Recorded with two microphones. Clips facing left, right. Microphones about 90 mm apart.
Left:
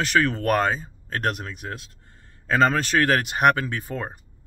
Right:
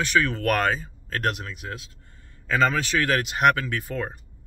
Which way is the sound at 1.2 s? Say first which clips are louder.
Left 1 dB; 45° left (ahead or behind).